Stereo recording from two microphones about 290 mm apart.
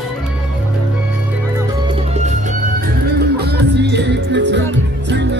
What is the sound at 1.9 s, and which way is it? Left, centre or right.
Music, right.